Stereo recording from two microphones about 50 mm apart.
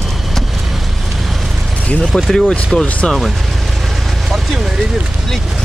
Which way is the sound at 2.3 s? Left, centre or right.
Centre.